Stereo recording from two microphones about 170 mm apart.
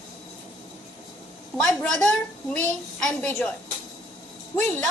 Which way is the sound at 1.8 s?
5° left (ahead or behind).